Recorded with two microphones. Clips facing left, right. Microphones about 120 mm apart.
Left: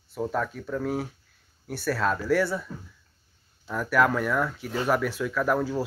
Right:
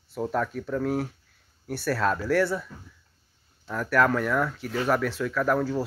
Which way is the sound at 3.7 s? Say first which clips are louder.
Even; 5° left (ahead or behind).